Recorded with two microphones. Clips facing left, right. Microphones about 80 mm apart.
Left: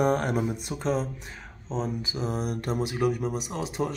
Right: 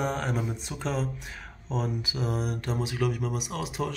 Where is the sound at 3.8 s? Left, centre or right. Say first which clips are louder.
Left 3 dB; centre.